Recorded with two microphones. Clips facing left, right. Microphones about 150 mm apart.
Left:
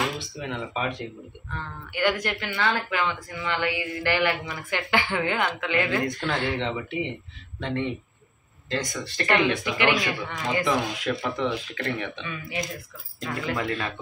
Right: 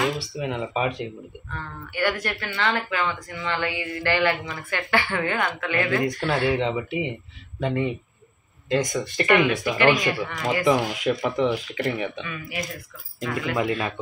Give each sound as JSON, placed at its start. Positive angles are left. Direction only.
{"t": 0.4, "sound": "speech", "side_deg": -10}
{"t": 2.0, "sound": "speech", "side_deg": 15}
{"t": 6.2, "sound": "speech", "side_deg": -10}
{"t": 10.2, "sound": "speech", "side_deg": 20}
{"t": 10.7, "sound": "speech", "side_deg": -15}
{"t": 12.3, "sound": "speech", "side_deg": 25}
{"t": 13.3, "sound": "speech", "side_deg": -10}